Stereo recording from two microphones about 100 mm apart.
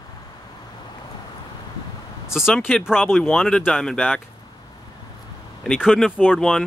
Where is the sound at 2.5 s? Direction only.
10° left (ahead or behind).